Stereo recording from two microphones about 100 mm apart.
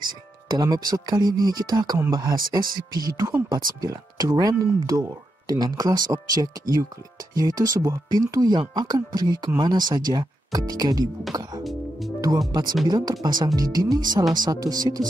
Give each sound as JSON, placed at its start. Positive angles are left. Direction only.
{"t": 0.0, "sound": "speech", "side_deg": -40}
{"t": 12.8, "sound": "speech", "side_deg": -45}